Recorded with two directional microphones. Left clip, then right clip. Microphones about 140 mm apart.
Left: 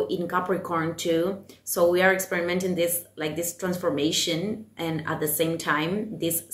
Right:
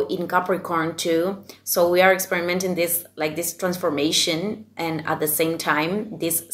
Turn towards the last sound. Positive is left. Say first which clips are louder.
# right 3 dB
turn(degrees=20)  # may be behind; listen again after turning